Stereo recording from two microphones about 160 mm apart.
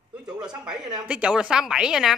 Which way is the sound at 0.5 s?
5° right (ahead or behind).